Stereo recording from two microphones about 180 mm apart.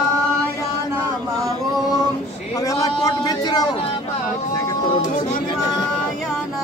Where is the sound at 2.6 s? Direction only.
20° left (ahead or behind).